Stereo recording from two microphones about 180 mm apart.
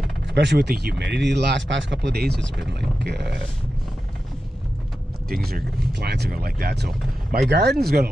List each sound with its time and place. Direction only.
0.3 s speech: 75° right (ahead or behind)
3.0 s a sound: 70° right (ahead or behind)
5.3 s speech: 60° right (ahead or behind)